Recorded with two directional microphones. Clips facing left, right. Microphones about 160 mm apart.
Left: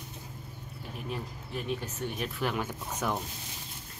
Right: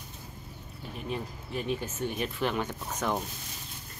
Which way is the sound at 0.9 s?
Centre (ahead or behind).